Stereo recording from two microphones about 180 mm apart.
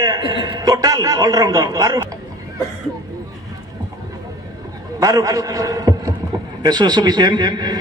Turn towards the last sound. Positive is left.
turn(degrees=-25)  # may be behind; listen again after turning